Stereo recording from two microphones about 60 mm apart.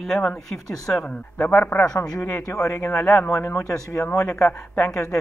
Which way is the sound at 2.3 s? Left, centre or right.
Left.